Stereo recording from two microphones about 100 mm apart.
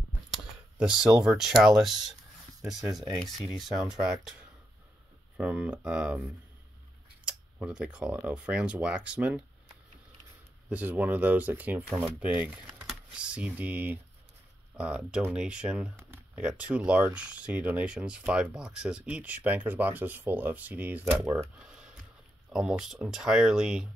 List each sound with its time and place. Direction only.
0.7 s speech: 10° right (ahead or behind)
7.2 s speech: 10° right (ahead or behind)
10.7 s speech: 15° right (ahead or behind)
21.5 s a sound: 10° right (ahead or behind)
22.5 s speech: 5° right (ahead or behind)